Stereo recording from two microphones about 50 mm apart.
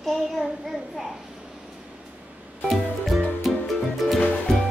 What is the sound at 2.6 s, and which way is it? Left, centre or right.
Music, centre.